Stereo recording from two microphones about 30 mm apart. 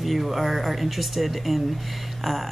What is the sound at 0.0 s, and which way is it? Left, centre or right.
Speech, centre.